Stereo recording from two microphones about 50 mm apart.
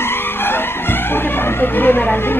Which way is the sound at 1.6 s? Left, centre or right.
Left.